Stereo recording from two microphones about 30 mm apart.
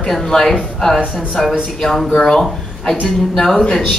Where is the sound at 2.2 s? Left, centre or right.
Centre.